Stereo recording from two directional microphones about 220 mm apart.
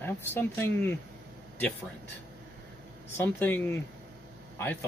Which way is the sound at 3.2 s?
10° left (ahead or behind).